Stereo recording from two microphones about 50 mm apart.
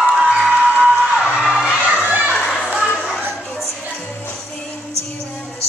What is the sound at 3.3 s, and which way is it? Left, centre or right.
Music, centre.